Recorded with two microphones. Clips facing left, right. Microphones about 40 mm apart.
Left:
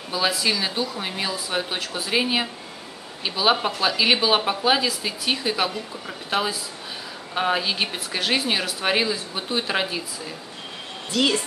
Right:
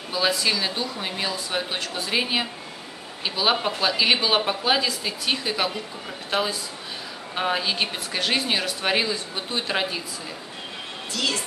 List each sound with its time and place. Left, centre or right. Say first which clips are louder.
0.1 s speech: even; centre
11.1 s speech: left 5 dB; left